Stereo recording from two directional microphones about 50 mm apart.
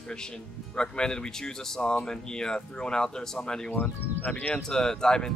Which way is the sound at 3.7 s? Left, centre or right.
Left.